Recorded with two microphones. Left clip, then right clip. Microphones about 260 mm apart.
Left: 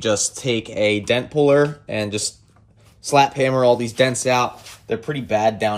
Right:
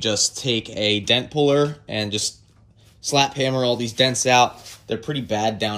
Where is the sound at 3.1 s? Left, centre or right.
Centre.